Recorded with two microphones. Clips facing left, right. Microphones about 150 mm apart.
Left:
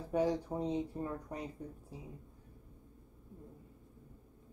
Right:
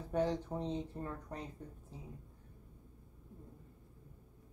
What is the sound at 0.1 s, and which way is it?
Speech, 10° left (ahead or behind).